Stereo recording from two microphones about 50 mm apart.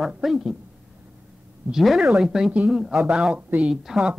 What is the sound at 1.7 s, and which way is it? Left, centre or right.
Speech, centre.